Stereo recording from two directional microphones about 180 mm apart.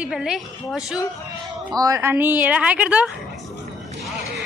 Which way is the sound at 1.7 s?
20° right (ahead or behind).